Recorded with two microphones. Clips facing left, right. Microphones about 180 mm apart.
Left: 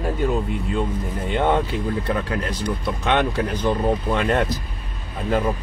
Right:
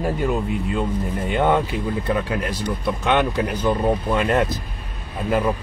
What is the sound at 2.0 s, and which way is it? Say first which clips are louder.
Speech: right 1 dB; 15° right (ahead or behind).